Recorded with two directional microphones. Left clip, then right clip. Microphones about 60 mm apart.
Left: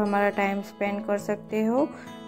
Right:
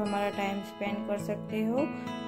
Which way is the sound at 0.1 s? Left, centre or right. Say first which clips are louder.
Left 7 dB; centre.